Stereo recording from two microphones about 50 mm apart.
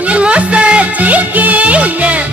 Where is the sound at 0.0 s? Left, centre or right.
Right.